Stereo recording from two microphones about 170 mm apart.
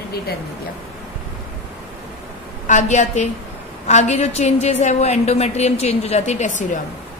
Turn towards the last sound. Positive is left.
turn(degrees=45)  # may be behind; listen again after turning